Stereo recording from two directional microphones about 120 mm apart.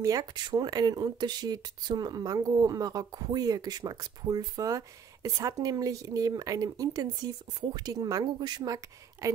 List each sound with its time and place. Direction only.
0.0 s speech: 30° right (ahead or behind)